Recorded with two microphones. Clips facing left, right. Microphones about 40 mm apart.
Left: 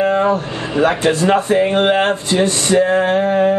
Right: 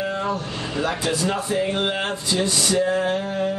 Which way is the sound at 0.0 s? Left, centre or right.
Left.